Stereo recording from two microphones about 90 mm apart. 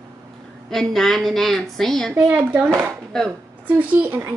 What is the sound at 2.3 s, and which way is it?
Speech, 20° right (ahead or behind).